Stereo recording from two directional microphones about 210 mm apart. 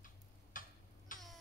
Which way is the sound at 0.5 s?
40° left (ahead or behind).